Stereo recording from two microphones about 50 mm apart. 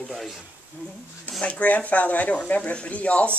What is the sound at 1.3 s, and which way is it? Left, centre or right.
Speech, left.